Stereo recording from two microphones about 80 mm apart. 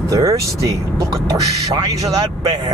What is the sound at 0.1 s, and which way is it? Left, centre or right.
Speech, right.